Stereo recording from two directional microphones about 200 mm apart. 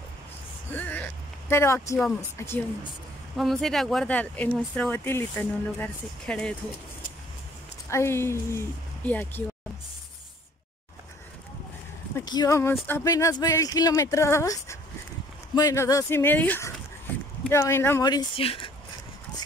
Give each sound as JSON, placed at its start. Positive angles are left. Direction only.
{"t": 0.7, "sound": "a sound", "side_deg": 10}
{"t": 2.3, "sound": "speech", "side_deg": 10}
{"t": 3.3, "sound": "speech", "side_deg": 0}
{"t": 7.9, "sound": "speech", "side_deg": 15}
{"t": 12.2, "sound": "speech", "side_deg": 15}